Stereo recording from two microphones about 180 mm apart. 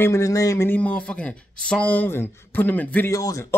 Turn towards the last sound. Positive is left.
turn(degrees=15)  # may be behind; listen again after turning